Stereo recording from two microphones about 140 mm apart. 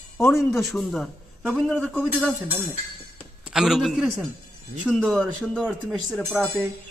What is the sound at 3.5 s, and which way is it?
Speech, centre (ahead or behind).